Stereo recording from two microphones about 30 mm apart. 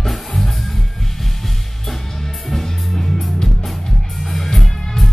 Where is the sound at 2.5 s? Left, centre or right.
Centre.